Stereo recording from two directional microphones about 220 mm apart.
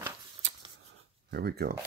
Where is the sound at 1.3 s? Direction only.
45° right (ahead or behind).